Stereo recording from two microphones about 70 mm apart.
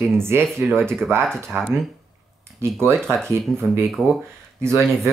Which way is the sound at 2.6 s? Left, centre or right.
Right.